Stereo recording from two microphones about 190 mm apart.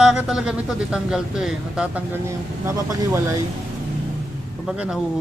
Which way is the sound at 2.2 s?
15° right (ahead or behind).